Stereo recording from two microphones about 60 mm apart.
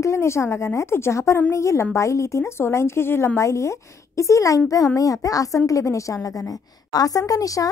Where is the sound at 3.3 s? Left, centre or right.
Left.